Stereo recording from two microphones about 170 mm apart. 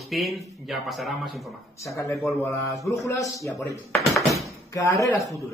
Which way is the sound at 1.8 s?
15° left (ahead or behind).